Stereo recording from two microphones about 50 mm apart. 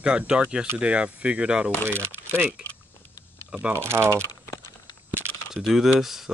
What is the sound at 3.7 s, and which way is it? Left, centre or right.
Speech, right.